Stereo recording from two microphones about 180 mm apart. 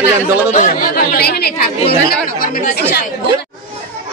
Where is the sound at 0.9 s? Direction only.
55° left (ahead or behind).